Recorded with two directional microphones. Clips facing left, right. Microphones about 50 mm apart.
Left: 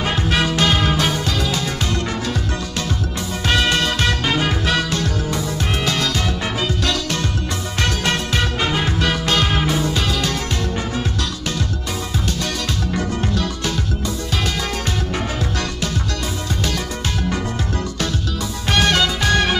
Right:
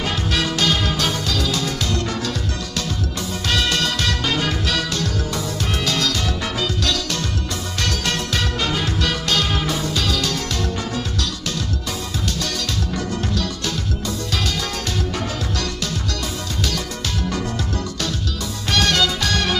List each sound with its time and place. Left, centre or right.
0.0 s music: left
3.4 s music: left
18.7 s music: left